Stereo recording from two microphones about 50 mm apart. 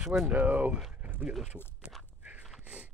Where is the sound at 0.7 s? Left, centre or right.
Right.